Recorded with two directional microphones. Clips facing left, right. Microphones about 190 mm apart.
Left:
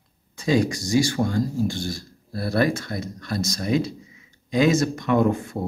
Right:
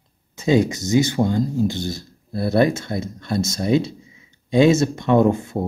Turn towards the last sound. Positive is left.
turn(degrees=-25)  # may be behind; listen again after turning